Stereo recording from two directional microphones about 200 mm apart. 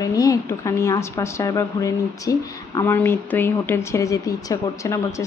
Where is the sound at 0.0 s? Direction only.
15° left (ahead or behind).